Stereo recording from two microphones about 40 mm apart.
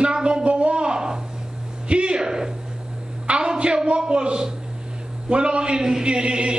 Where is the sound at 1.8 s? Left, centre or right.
Right.